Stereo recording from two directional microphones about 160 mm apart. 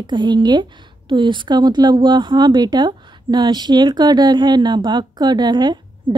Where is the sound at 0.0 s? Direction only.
30° right (ahead or behind).